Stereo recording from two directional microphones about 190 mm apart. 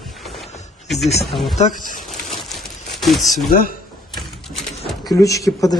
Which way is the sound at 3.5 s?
50° left (ahead or behind).